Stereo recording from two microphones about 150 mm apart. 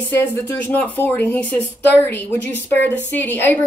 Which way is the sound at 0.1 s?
15° left (ahead or behind).